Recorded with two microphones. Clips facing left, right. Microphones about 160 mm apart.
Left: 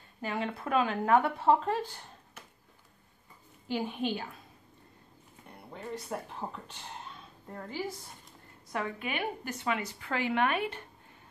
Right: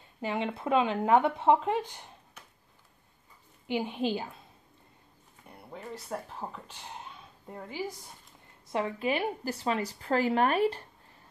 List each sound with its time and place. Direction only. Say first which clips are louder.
0.2 s speech: right 2 dB; 20° right (ahead or behind)
3.7 s speech: right 2 dB; 20° right (ahead or behind)
5.5 s speech: left 2 dB; 5° right (ahead or behind)
7.4 s a woman's voice: left 1 dB; 15° right (ahead or behind)
8.7 s a woman's voice: right 5 dB; 30° right (ahead or behind)